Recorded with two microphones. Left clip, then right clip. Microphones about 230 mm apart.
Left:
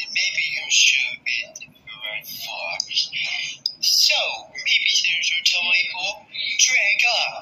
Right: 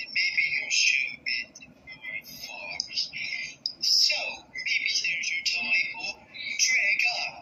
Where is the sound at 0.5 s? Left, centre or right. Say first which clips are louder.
Left 7 dB; centre.